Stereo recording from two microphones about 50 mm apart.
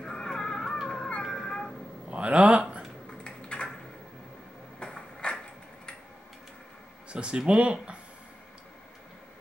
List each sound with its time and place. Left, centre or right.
0.0 s a sound: centre
0.8 s cat: centre
2.0 s speech: right
3.1 s typing: centre
4.7 s a sound: centre
7.1 s speech: centre